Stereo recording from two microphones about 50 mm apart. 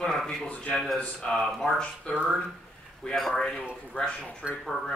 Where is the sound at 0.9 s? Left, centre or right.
Centre.